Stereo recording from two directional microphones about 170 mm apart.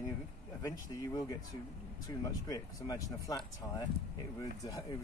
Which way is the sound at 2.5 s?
25° left (ahead or behind).